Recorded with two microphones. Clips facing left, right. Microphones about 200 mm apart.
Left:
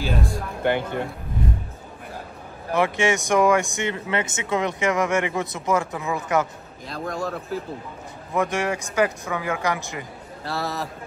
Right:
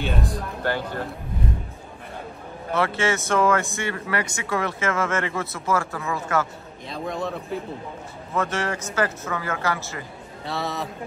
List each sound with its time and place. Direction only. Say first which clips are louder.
0.0 s music: left 1 dB; centre (ahead or behind)
2.7 s speech: left 2 dB; 15° left (ahead or behind)
6.9 s a man's voice: even; centre (ahead or behind)
8.3 s speech: left 2 dB; 15° left (ahead or behind)
10.4 s a man's voice: even; centre (ahead or behind)